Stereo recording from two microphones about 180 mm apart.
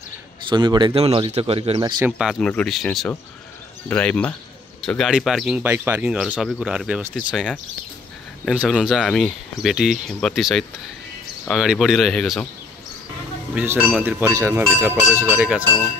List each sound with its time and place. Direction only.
0.5 s speech: 25° right (ahead or behind)
2.0 s speech: 5° right (ahead or behind)
13.6 s speech: 5° right (ahead or behind)